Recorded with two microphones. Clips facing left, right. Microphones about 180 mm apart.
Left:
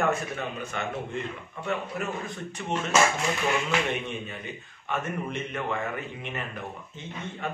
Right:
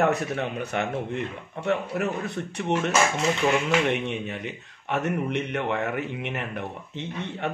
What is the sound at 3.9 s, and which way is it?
A man's voice, 75° right (ahead or behind).